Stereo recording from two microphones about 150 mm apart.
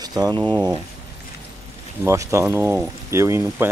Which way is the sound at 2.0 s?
20° right (ahead or behind).